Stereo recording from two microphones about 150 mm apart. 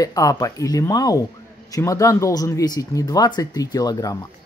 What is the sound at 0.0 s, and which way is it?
Speech, 25° left (ahead or behind).